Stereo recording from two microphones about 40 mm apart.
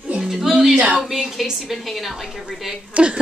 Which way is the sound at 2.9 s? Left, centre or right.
Right.